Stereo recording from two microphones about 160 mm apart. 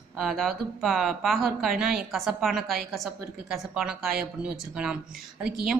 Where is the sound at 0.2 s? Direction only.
Centre (ahead or behind).